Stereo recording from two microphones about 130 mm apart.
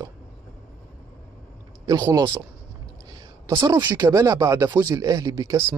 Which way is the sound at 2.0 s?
25° right (ahead or behind).